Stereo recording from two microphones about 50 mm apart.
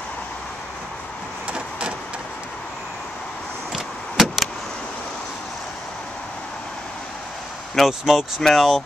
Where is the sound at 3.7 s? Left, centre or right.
Centre.